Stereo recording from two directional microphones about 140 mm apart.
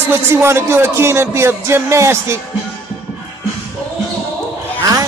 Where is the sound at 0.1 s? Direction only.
20° right (ahead or behind).